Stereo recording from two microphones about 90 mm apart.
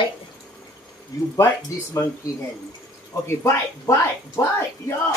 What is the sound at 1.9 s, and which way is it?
Speech, 35° left (ahead or behind).